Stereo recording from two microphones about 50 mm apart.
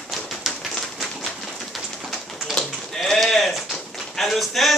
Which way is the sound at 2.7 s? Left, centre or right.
Centre.